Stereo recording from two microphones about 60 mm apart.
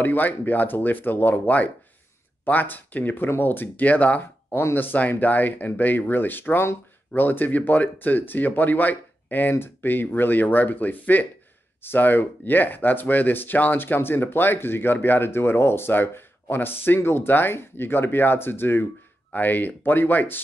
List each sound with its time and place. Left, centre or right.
0.0 s speech: left
4.6 s speech: left